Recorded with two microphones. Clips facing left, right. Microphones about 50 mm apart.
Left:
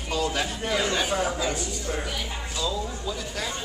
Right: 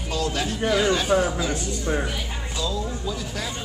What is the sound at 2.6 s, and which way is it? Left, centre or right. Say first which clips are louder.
Speech: right 2 dB; centre.